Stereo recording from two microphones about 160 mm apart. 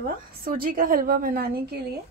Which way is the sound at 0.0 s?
65° right (ahead or behind).